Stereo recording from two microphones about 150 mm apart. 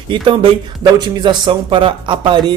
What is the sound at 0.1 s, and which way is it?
A man's voice, 35° right (ahead or behind).